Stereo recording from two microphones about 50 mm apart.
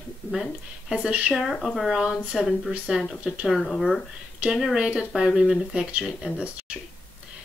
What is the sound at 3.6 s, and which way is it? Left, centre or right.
Speech, centre.